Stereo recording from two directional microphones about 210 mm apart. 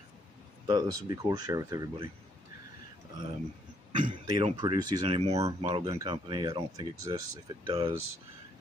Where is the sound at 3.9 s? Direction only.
25° right (ahead or behind).